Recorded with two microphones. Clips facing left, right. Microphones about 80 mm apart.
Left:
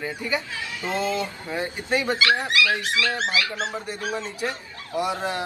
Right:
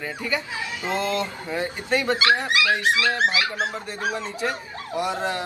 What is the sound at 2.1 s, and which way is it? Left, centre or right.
Speech, right.